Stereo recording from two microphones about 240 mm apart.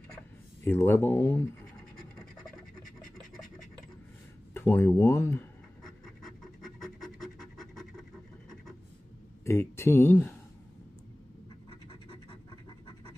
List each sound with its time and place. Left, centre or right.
0.7 s speech: centre
3.0 s scratch: centre
9.4 s speech: centre
12.3 s scratch: centre